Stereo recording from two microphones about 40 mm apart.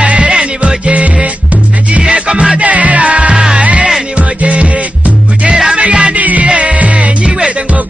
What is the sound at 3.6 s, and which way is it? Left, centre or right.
Music, right.